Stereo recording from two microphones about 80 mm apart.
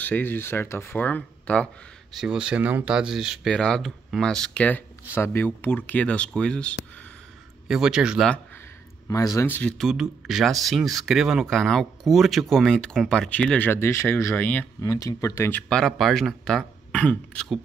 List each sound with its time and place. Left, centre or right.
0.0 s speech: left
2.1 s speech: centre
3.4 s speech: centre
5.1 s speech: left; by 6.7 s centre
7.6 s speech: centre
9.0 s speech: left
9.5 s speech: centre
9.8 s speech: centre
13.6 s speech: left
14.3 s speech: left
14.8 s speech: left
15.7 s speech: centre
16.9 s speech: centre